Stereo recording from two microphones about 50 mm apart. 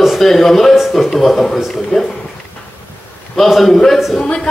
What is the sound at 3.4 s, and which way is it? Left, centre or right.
Speech, centre.